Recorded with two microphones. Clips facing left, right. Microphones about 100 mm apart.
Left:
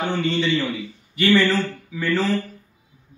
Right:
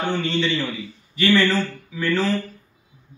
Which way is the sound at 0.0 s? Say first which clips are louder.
Left 1 dB; 10° left (ahead or behind).